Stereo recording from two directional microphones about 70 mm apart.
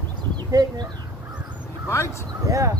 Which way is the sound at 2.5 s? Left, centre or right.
Right.